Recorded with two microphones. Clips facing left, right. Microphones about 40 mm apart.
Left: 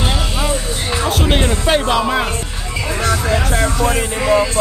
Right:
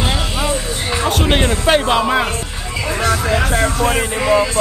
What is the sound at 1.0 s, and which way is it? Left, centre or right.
Music, centre.